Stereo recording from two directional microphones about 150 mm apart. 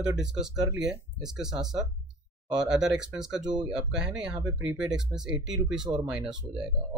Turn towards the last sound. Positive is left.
turn(degrees=-5)  # may be behind; listen again after turning